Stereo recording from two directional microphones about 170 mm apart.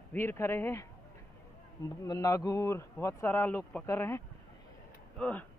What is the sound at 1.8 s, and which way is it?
A man's voice, 20° left (ahead or behind).